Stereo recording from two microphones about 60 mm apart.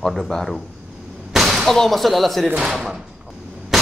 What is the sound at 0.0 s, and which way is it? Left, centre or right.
Speech, centre.